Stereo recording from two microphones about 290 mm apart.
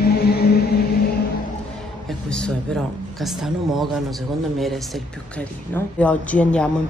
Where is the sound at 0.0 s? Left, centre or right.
Left.